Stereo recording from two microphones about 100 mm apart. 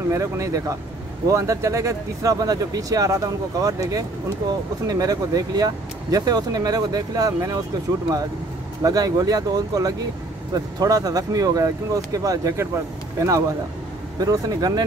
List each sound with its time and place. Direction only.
0.1 s speech: 30° right (ahead or behind)
8.8 s speech: 40° right (ahead or behind)